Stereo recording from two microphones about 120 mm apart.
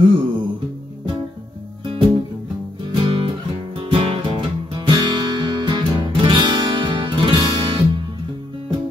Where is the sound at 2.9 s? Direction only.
45° right (ahead or behind).